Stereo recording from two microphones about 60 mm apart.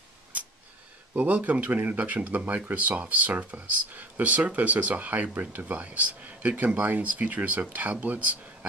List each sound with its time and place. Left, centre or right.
1.1 s speech: right